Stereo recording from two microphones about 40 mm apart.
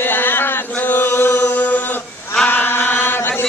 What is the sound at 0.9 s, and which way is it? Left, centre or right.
Chant, left.